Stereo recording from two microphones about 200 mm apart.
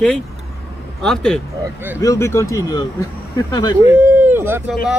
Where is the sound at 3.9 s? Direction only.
10° right (ahead or behind).